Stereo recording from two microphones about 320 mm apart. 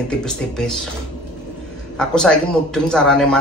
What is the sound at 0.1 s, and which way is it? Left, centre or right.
Speech, centre.